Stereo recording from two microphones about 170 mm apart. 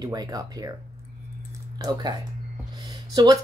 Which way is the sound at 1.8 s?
25° right (ahead or behind).